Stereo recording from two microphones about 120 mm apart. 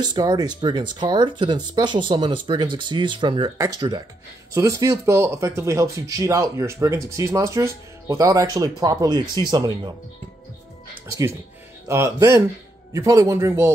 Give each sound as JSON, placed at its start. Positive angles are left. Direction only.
{"t": 0.0, "sound": "speech", "side_deg": -35}
{"t": 3.5, "sound": "speech", "side_deg": -30}
{"t": 11.9, "sound": "speech", "side_deg": -25}